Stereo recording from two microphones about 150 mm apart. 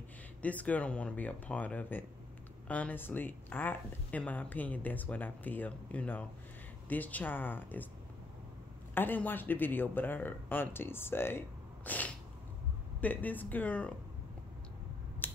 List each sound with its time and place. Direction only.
0.4 s speech: 10° left (ahead or behind)
8.9 s speech: 10° left (ahead or behind)
15.2 s finger snapping: 10° left (ahead or behind)